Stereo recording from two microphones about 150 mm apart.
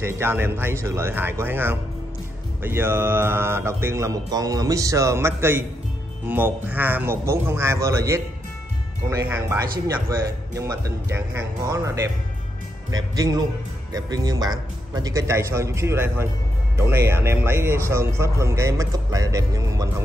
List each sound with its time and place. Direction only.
0.0 s speech: 15° right (ahead or behind)